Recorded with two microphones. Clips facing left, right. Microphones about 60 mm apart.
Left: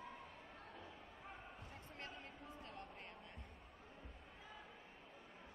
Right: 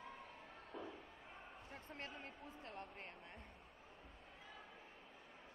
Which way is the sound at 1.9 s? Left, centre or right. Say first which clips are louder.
Right 2 dB; right.